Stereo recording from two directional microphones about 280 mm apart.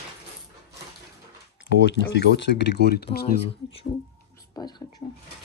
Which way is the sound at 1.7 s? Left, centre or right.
Left.